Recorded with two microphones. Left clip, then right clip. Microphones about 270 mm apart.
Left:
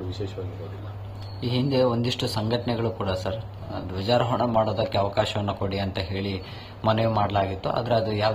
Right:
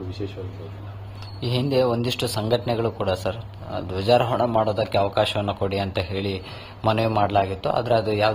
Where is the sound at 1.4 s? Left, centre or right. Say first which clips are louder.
Right 2 dB; centre.